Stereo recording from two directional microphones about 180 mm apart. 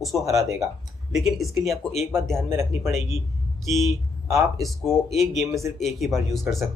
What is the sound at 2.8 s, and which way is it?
Speech, centre (ahead or behind).